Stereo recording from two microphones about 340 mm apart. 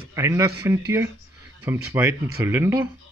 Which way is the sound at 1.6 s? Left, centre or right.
Centre.